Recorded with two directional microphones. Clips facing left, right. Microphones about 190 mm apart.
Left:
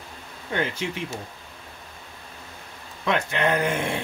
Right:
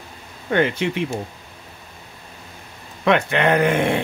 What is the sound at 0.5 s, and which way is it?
Speech, 65° right (ahead or behind).